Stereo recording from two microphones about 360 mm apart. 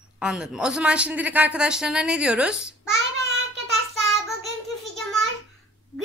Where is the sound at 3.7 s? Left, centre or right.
Centre.